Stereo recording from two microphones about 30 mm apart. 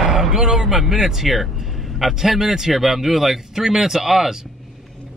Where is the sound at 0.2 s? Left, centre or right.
Centre.